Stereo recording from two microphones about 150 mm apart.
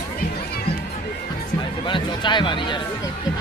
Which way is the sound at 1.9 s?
30° left (ahead or behind).